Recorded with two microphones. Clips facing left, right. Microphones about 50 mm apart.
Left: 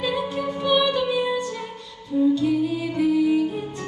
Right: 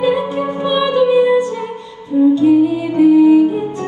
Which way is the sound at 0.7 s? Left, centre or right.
Right.